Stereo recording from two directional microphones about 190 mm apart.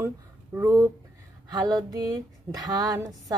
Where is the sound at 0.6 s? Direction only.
15° right (ahead or behind).